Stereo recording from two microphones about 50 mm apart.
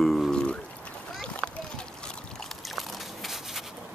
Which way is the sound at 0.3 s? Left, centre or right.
Centre.